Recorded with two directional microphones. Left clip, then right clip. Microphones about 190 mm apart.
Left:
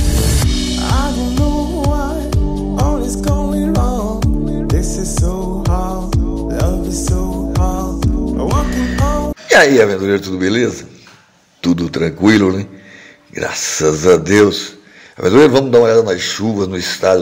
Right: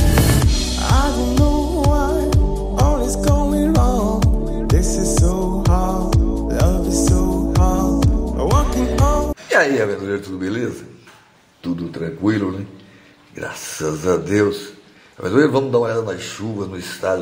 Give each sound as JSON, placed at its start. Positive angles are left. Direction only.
{"t": 0.7, "sound": "music", "side_deg": 0}
{"t": 9.5, "sound": "a man's voice", "side_deg": 25}
{"t": 11.6, "sound": "a man's voice", "side_deg": 30}